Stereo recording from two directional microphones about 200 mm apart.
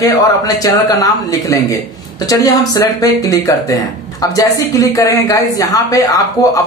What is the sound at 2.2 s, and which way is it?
Speech, 15° left (ahead or behind).